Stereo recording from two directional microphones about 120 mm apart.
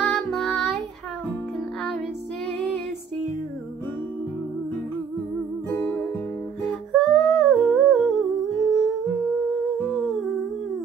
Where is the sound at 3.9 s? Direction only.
25° left (ahead or behind).